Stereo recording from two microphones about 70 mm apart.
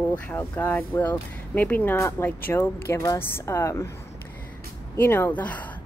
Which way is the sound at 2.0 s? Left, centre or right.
Left.